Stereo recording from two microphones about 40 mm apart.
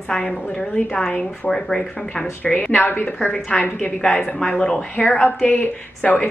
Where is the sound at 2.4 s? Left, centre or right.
Left.